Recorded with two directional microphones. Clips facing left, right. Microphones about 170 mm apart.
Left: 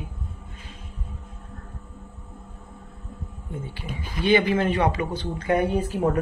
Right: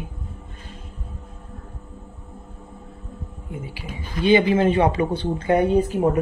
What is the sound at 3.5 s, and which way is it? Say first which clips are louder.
Speech: right 1 dB; 10° right (ahead or behind).